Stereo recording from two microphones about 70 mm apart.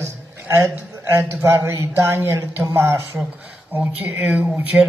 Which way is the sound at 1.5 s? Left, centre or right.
Right.